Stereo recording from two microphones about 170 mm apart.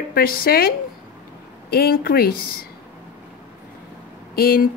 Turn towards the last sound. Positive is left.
turn(degrees=60)  # may be behind; listen again after turning